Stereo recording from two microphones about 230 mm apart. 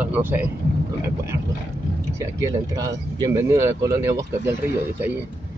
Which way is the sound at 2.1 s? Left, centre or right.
Centre.